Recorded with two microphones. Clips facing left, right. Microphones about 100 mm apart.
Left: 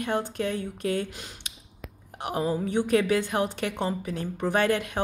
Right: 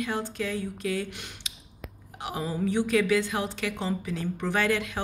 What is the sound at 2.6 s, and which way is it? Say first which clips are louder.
Speech: right 1 dB; 50° left (ahead or behind).